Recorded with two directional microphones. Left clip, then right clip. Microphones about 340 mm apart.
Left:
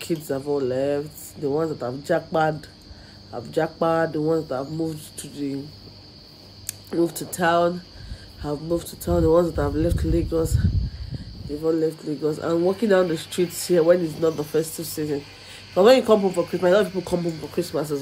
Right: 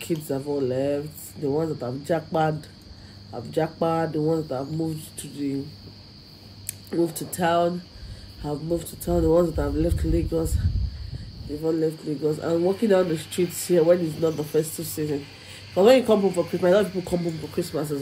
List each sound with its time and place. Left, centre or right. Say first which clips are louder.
0.0 s speech: left 2 dB; centre
6.6 s speech: left 2 dB; centre
11.6 s speech: left 2 dB; centre